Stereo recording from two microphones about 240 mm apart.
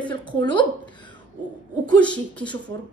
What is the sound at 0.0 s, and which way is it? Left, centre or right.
A woman's voice, centre.